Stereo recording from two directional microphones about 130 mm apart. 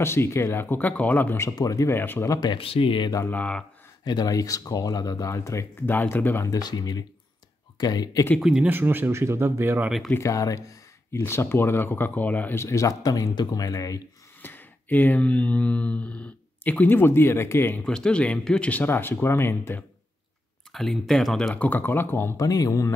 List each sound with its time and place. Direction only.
0.0 s speech: 20° left (ahead or behind)
1.5 s speech: 25° left (ahead or behind)
2.5 s speech: 45° left (ahead or behind)
3.3 s speech: 10° left (ahead or behind)
4.0 s speech: 30° left (ahead or behind)
6.6 s speech: 30° left (ahead or behind)
8.4 s speech: 5° right (ahead or behind)
8.6 s speech: 15° right (ahead or behind)
9.8 s speech: centre (ahead or behind)
10.1 s speech: 25° left (ahead or behind)
14.4 s speech: 15° left (ahead or behind)
17.8 s speech: 5° left (ahead or behind)
20.7 s speech: centre (ahead or behind)
21.5 s speech: 15° left (ahead or behind)